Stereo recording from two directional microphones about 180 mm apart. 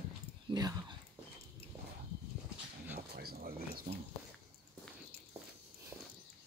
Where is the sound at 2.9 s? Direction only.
60° right (ahead or behind).